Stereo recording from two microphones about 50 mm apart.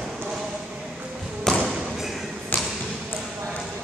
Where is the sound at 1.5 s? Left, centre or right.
Centre.